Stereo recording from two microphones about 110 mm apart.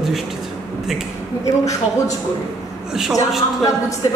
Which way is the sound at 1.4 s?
30° left (ahead or behind).